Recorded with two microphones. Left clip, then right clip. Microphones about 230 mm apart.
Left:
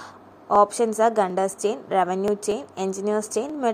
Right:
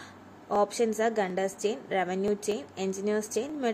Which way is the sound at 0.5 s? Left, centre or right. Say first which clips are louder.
Left 8 dB; centre.